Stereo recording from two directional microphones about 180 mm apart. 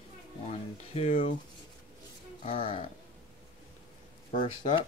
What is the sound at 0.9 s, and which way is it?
Speech, 35° left (ahead or behind).